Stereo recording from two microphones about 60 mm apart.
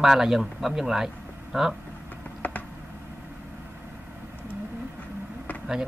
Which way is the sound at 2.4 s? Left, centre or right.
Left.